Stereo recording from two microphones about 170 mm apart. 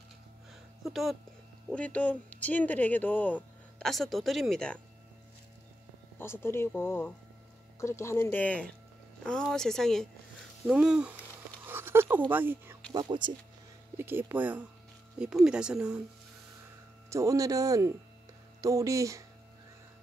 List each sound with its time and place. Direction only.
0.8 s speech: centre (ahead or behind)
6.1 s speech: 15° left (ahead or behind)
10.7 s a sound: 5° right (ahead or behind)
12.3 s speech: 10° right (ahead or behind)
12.9 s speech: 25° right (ahead or behind)
13.9 s speech: 10° right (ahead or behind)
17.1 s speech: 20° right (ahead or behind)